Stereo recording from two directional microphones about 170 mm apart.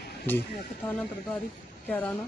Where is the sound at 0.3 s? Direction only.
10° left (ahead or behind).